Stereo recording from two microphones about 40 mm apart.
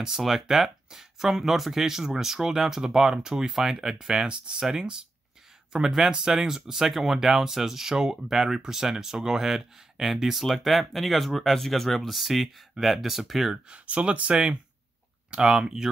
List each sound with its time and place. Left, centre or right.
0.2 s speech: centre
13.7 s speech: right
15.5 s speech: centre